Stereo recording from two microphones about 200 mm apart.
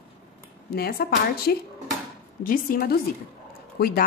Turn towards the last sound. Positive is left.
turn(degrees=50)  # may be behind; listen again after turning